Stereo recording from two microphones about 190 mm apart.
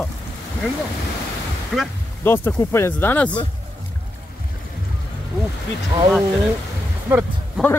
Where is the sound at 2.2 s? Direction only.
10° left (ahead or behind).